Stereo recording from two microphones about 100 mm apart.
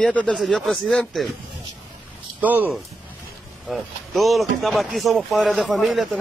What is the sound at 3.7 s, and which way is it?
Speech, centre (ahead or behind).